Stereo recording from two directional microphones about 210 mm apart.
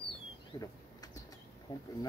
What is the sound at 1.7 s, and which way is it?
Speech, 20° left (ahead or behind).